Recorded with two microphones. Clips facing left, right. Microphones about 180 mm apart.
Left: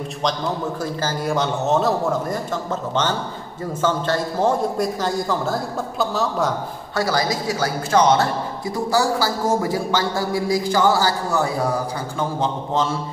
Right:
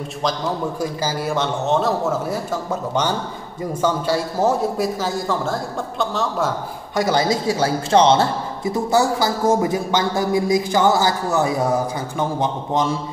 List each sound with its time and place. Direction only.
0.2 s a man's voice: 5° right (ahead or behind)
1.3 s a man's voice: centre (ahead or behind)
7.0 s a man's voice: 20° right (ahead or behind)